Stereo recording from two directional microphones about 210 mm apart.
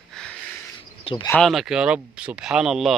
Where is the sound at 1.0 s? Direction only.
20° left (ahead or behind).